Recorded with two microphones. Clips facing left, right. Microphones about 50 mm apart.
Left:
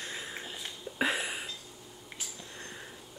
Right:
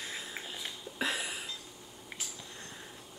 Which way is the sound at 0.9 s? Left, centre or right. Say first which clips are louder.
Left 4 dB; centre.